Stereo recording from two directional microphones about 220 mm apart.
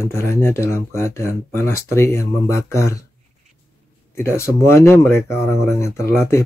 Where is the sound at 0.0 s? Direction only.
10° left (ahead or behind).